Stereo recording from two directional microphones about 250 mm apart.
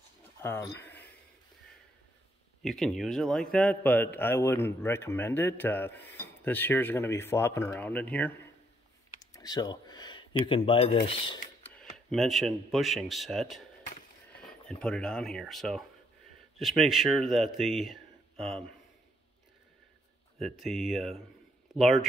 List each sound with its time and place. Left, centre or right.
0.4 s speech: centre
2.6 s a man's voice: centre
9.2 s a sound: centre
10.4 s speech: left
11.8 s speech: centre
20.3 s speech: centre